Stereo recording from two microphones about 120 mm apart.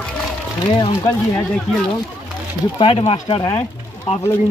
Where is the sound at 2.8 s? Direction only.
50° left (ahead or behind).